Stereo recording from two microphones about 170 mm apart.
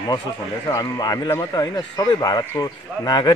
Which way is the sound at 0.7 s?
20° left (ahead or behind).